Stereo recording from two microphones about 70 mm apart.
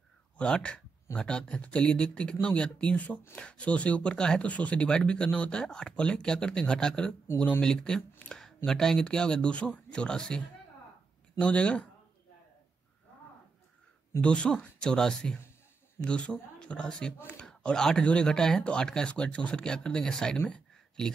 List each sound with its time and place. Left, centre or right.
0.4 s speech: centre
8.3 s a sound: centre
8.6 s speech: centre
14.2 s speech: centre